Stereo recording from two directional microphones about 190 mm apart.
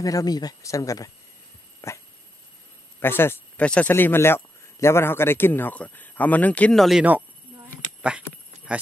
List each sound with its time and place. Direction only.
0.0 s speech: 20° left (ahead or behind)
1.8 s dog: 15° left (ahead or behind)
3.0 s speech: 10° left (ahead or behind); by 7.2 s 5° right (ahead or behind)